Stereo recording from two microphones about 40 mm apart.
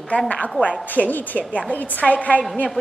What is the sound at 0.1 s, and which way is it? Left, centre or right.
A woman's voice, left.